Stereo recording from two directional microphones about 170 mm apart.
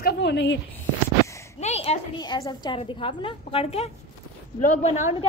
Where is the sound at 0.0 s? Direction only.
85° left.